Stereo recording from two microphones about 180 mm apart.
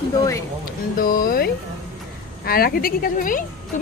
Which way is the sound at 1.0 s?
55° left (ahead or behind).